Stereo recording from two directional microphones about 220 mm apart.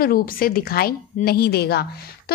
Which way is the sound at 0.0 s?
40° left (ahead or behind).